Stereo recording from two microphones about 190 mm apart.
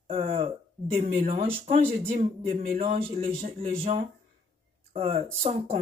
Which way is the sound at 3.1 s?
30° right (ahead or behind).